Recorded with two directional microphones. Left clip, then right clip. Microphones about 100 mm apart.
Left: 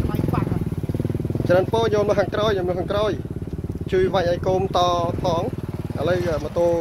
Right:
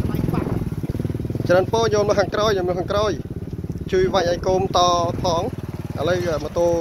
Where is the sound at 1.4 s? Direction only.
35° right (ahead or behind).